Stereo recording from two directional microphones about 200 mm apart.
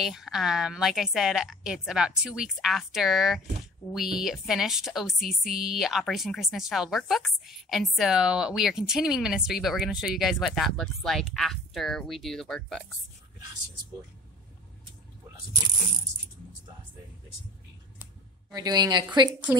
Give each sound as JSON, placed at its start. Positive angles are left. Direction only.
{"t": 0.0, "sound": "a woman's voice", "side_deg": 0}
{"t": 18.5, "sound": "speech", "side_deg": -20}